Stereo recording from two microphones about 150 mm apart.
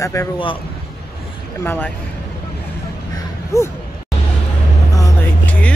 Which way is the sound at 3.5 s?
20° left (ahead or behind).